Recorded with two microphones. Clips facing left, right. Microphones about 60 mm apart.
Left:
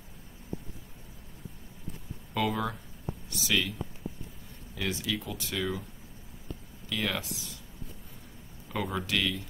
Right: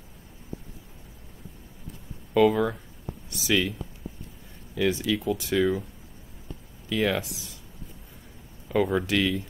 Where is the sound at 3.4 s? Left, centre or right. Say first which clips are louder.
Right 5 dB; centre.